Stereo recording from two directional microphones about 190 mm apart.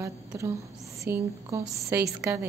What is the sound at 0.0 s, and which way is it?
A woman's voice, 15° right (ahead or behind).